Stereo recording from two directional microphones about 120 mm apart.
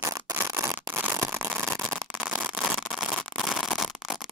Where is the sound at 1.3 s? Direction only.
Centre (ahead or behind).